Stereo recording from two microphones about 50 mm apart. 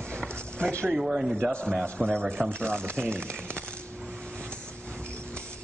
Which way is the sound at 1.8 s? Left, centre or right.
Centre.